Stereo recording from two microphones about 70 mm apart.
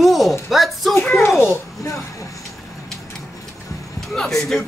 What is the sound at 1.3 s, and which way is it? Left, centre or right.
Speech, left.